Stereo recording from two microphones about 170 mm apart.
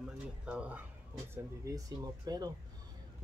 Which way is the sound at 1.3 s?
20° right (ahead or behind).